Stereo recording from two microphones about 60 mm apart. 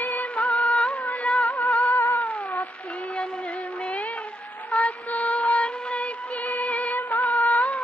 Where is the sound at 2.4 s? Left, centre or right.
Left.